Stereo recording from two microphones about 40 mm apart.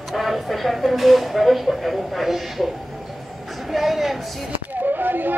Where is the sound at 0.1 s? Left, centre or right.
Centre.